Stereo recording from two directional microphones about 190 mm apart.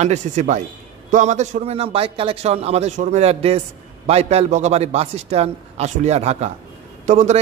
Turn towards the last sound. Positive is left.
turn(degrees=-40)  # may be behind; listen again after turning